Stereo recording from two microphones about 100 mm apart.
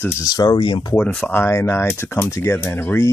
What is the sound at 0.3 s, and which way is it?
Speech, 45° left (ahead or behind).